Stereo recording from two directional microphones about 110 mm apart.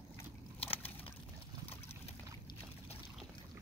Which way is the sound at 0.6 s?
60° left (ahead or behind).